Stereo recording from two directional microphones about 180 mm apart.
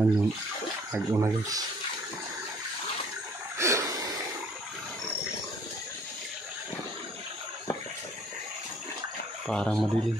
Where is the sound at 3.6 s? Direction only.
15° right (ahead or behind).